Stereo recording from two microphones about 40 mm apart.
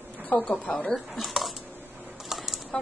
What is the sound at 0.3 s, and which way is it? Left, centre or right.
Speech, left.